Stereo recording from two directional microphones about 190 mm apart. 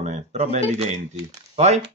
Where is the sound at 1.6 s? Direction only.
35° right (ahead or behind).